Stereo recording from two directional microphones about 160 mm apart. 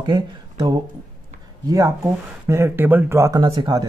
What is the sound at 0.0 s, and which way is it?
Speech, 25° right (ahead or behind).